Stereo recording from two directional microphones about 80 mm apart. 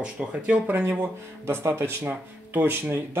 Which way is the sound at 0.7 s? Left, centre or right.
Right.